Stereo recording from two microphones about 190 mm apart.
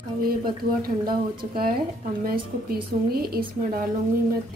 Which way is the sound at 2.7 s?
55° right (ahead or behind).